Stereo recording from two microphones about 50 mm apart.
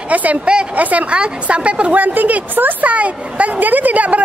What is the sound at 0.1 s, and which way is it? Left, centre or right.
A woman's voice, right.